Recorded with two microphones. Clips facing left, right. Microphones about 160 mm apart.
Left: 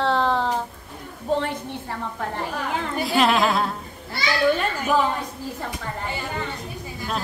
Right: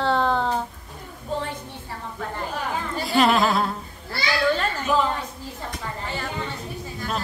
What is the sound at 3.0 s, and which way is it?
Speech, centre (ahead or behind).